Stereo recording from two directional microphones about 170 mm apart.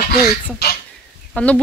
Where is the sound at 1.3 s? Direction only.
10° left (ahead or behind).